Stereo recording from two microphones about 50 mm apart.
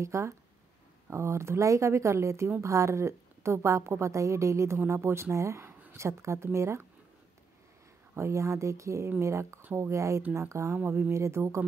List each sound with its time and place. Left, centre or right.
0.0 s a woman's voice: right
2.6 s a woman's voice: right
4.8 s a woman's voice: right
8.2 s a woman's voice: right
10.9 s speech: right
11.1 s a woman's voice: right